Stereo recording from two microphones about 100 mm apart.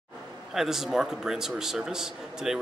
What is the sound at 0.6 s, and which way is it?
A man's voice, 5° right (ahead or behind).